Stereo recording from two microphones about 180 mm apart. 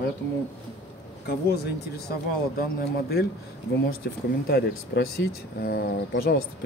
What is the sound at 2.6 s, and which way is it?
Speech, 60° left (ahead or behind).